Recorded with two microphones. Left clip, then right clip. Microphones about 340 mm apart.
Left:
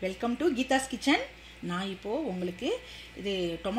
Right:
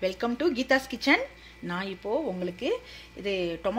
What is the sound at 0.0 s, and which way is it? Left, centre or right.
Speech, right.